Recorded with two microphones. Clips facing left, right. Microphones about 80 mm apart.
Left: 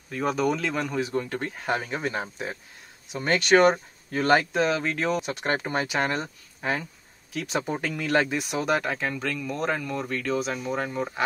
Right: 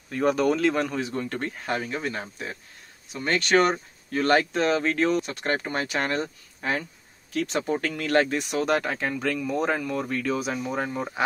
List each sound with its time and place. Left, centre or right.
0.1 s speech: centre
1.7 s speech: centre